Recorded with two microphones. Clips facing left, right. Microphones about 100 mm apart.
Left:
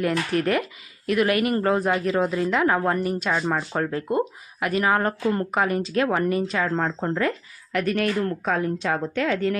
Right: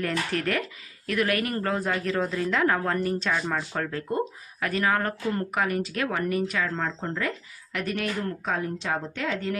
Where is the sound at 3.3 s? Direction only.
25° left (ahead or behind).